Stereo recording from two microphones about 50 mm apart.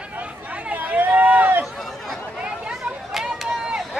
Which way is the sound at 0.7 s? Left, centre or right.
Right.